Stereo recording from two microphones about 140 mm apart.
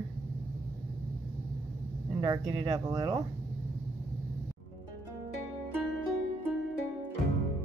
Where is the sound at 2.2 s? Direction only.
25° right (ahead or behind).